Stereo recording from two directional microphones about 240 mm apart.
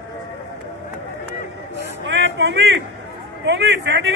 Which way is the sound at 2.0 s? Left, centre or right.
Right.